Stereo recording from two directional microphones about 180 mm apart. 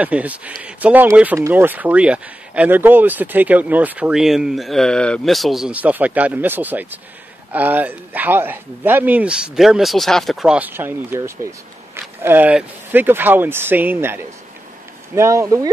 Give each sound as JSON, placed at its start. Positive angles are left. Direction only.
{"t": 0.0, "sound": "speech", "side_deg": -10}